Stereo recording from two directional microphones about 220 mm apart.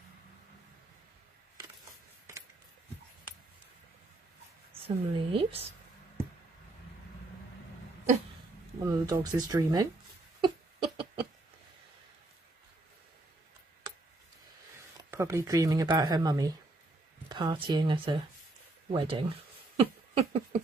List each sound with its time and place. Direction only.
4.8 s speech: 25° right (ahead or behind)
8.8 s speech: 15° right (ahead or behind)
10.4 s a sound: 20° right (ahead or behind)
15.0 s speech: 15° right (ahead or behind)